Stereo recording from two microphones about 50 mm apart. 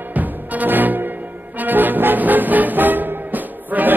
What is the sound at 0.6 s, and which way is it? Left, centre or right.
Music, right.